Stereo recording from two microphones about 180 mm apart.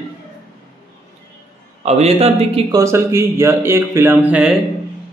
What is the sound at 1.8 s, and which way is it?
Speech, 35° right (ahead or behind).